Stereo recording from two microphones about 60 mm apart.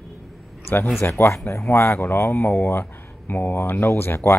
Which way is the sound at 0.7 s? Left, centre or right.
Left.